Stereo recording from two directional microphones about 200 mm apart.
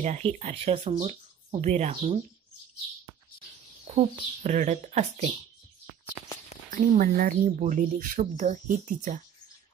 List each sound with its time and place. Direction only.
0.0 s speech: 35° right (ahead or behind)
3.8 s speech: 35° right (ahead or behind)
6.7 s speech: 45° right (ahead or behind)